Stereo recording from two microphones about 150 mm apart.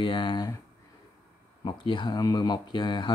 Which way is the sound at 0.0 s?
30° left (ahead or behind).